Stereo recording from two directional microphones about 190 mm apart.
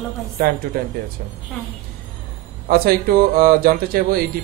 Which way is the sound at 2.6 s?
50° right (ahead or behind).